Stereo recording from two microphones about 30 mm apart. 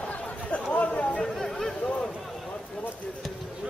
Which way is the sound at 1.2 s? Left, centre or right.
Centre.